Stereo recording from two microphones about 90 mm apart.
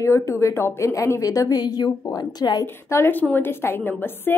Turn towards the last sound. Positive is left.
turn(degrees=25)  # may be behind; listen again after turning